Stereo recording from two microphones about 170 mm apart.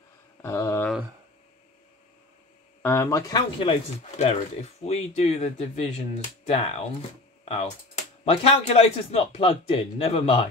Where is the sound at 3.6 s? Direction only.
35° left (ahead or behind).